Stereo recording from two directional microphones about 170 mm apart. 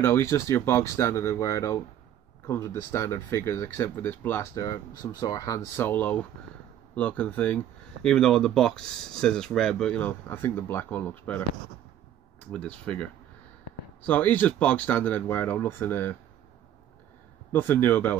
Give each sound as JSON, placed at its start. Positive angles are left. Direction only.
{"t": 0.0, "sound": "speech", "side_deg": 15}
{"t": 12.4, "sound": "speech", "side_deg": 5}
{"t": 14.0, "sound": "speech", "side_deg": 10}
{"t": 17.5, "sound": "speech", "side_deg": 10}